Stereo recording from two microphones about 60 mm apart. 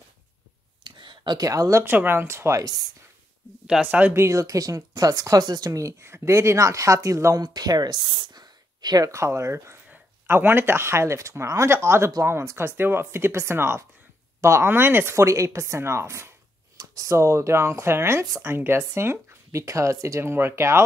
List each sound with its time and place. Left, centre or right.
1.4 s speech: right
1.9 s speech: right
3.6 s speech: centre
4.1 s speech: right
7.3 s speech: right
8.9 s speech: right
10.2 s speech: right
14.7 s speech: right
15.1 s speech: right
16.7 s speech: right
19.6 s speech: right